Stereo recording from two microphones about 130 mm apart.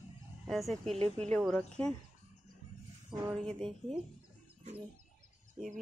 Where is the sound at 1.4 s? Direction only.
Centre (ahead or behind).